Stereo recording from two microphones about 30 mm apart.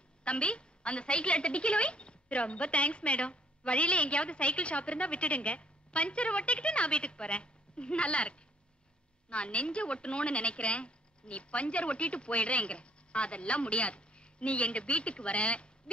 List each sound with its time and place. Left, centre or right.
0.2 s a woman's voice: left